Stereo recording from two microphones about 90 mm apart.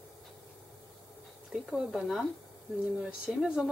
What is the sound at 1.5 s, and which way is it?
Speech, 5° right (ahead or behind).